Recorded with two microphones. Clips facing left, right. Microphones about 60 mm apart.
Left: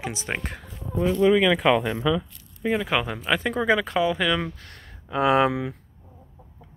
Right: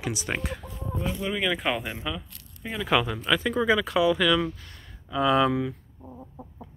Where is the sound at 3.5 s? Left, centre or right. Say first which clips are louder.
Left 2 dB; left.